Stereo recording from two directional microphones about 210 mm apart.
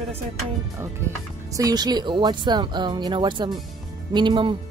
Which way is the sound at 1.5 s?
15° right (ahead or behind).